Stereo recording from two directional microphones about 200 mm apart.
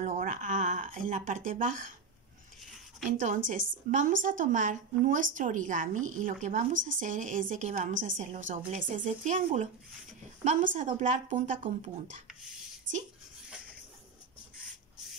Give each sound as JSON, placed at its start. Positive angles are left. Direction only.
{"t": 0.0, "sound": "a sound", "side_deg": -40}
{"t": 0.9, "sound": "speech", "side_deg": -40}
{"t": 3.1, "sound": "a woman's voice", "side_deg": -40}
{"t": 12.9, "sound": "speech", "side_deg": -70}